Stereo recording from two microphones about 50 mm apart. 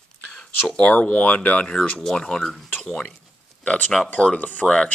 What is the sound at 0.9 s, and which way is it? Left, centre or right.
Speech, left.